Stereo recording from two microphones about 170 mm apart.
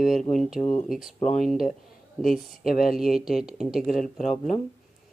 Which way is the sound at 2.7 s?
60° left (ahead or behind).